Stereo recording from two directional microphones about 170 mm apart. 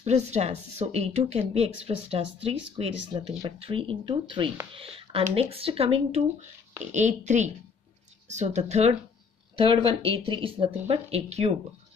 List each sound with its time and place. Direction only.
0.0 s a woman's voice: 40° right (ahead or behind)
9.6 s speech: 30° right (ahead or behind)